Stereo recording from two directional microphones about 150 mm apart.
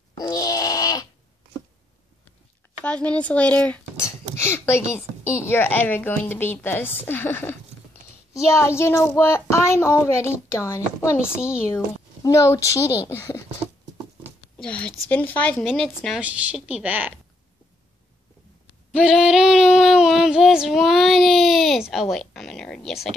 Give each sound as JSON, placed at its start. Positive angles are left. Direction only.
{"t": 0.2, "sound": "wail", "side_deg": 25}
{"t": 2.8, "sound": "a child's voice", "side_deg": 10}
{"t": 14.6, "sound": "a child's voice", "side_deg": 5}
{"t": 15.6, "sound": "female singing", "side_deg": 5}
{"t": 16.2, "sound": "a woman's voice", "side_deg": -10}
{"t": 18.9, "sound": "female singing", "side_deg": -5}
{"t": 22.1, "sound": "a sound", "side_deg": 0}